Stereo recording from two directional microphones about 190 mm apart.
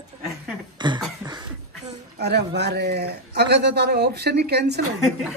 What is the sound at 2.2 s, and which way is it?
A man's voice, 60° right (ahead or behind).